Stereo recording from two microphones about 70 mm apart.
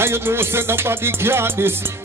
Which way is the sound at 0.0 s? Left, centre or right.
Right.